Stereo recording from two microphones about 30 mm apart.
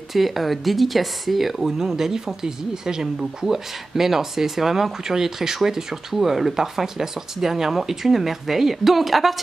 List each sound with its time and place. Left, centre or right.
0.1 s speech: centre